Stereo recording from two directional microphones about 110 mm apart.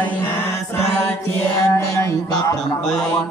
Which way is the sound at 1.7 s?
30° left (ahead or behind).